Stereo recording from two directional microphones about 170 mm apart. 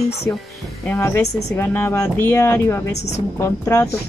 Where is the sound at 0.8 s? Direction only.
10° left (ahead or behind).